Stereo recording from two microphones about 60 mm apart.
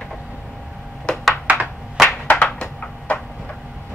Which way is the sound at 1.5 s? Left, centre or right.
Right.